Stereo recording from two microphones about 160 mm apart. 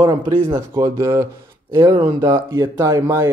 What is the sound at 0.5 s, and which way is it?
Speech, 20° right (ahead or behind).